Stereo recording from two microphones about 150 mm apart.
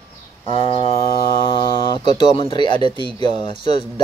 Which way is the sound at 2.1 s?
35° left (ahead or behind).